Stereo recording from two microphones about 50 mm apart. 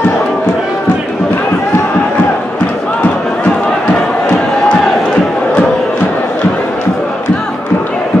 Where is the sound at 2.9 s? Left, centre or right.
Left.